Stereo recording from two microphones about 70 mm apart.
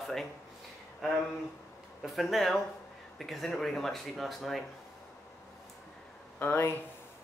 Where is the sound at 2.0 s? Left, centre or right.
Centre.